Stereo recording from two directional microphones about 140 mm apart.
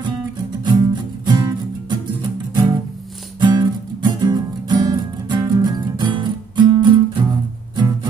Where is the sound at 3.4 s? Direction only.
30° right (ahead or behind).